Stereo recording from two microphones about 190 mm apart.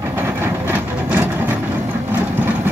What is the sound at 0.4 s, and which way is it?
Vehicle, 10° right (ahead or behind).